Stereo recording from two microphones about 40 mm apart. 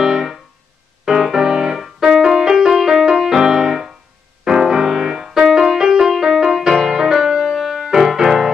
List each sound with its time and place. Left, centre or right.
0.0 s music: centre